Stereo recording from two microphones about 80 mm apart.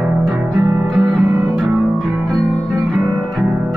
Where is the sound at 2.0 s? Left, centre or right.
Centre.